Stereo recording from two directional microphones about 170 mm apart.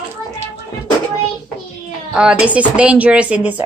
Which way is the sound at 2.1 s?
5° right (ahead or behind).